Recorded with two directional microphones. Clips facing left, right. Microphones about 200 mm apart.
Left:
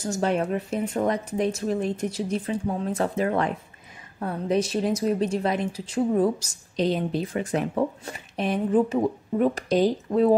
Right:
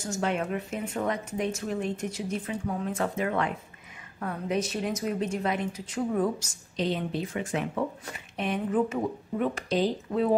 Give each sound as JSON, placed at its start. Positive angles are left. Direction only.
{"t": 0.1, "sound": "speech", "side_deg": 35}